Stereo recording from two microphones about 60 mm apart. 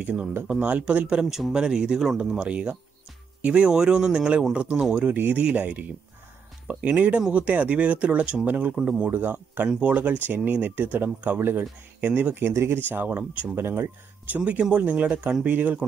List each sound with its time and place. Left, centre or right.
0.0 s speech: centre
1.0 s speech: centre
3.7 s speech: centre
4.9 s speech: right
9.1 s speech: right
9.7 s speech: right
12.4 s speech: right
12.9 s speech: right
13.6 s speech: right
14.2 s speech: right